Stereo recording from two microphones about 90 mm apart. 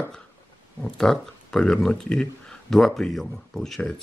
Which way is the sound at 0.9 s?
5° left (ahead or behind).